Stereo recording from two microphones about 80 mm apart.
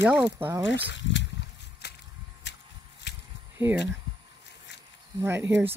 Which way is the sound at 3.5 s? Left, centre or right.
Right.